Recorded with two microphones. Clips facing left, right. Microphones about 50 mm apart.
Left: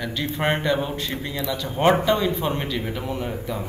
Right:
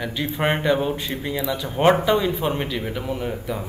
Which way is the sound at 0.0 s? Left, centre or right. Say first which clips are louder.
Right 1 dB; centre.